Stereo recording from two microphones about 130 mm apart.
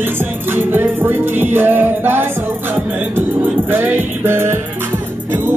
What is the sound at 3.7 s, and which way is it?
Music, 15° right (ahead or behind).